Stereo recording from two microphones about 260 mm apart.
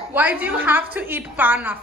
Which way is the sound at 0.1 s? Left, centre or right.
Centre.